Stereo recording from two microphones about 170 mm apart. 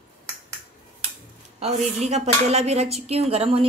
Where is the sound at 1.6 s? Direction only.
40° right (ahead or behind).